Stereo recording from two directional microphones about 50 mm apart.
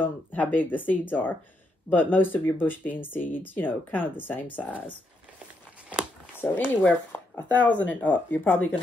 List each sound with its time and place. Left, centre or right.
0.0 s speech: left
6.3 s speech: left